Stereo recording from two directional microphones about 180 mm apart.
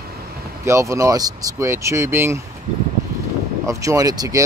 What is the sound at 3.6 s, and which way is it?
Speech, 15° right (ahead or behind).